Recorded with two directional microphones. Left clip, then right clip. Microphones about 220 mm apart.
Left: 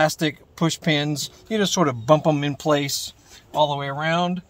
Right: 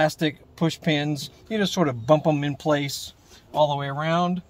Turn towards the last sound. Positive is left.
turn(degrees=-5)  # may be behind; listen again after turning